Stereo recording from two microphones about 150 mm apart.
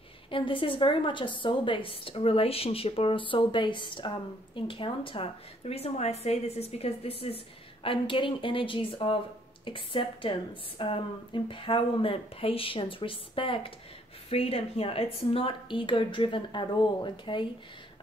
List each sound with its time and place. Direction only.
0.3 s a woman's voice: 35° left (ahead or behind)